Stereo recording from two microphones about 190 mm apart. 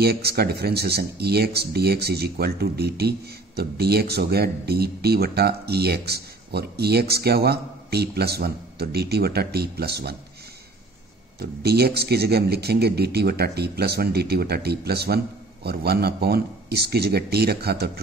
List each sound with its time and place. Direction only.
0.0 s speech: 55° right (ahead or behind)
11.3 s speech: 55° right (ahead or behind)